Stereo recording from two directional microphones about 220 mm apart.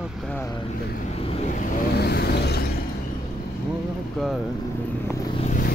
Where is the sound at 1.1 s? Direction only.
25° left (ahead or behind); by 2.6 s 50° left (ahead or behind).